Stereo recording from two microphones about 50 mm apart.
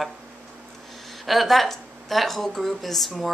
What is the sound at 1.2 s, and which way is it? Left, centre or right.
Speech, centre.